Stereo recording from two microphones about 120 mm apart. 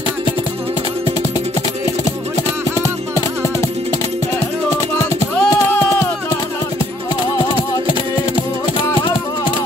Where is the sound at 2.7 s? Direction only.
25° left (ahead or behind).